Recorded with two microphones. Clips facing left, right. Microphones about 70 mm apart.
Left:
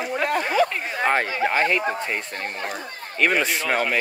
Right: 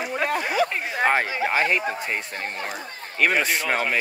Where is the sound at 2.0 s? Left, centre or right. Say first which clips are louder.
Left 1 dB; centre.